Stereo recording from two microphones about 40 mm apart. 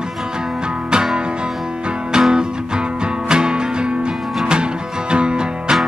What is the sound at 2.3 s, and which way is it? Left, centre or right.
Music, right.